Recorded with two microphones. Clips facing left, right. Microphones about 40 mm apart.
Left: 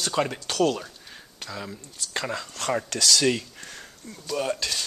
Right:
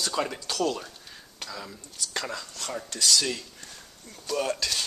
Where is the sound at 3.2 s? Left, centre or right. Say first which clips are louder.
Left 8 dB; left.